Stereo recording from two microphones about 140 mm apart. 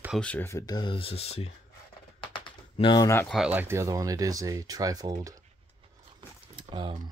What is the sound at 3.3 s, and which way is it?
Speech, 10° right (ahead or behind).